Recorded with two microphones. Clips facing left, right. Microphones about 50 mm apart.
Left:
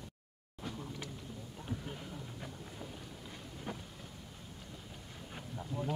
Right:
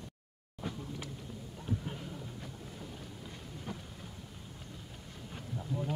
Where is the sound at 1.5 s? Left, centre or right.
Centre.